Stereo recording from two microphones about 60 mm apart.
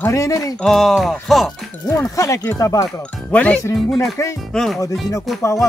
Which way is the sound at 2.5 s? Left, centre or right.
Left.